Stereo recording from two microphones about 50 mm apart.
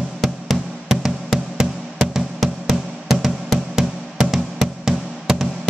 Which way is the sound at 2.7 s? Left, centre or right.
Centre.